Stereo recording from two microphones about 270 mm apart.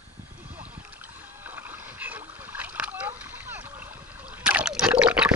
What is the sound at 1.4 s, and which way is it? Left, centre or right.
Splash, centre.